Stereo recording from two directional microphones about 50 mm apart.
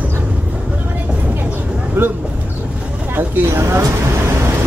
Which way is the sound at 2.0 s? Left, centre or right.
Right.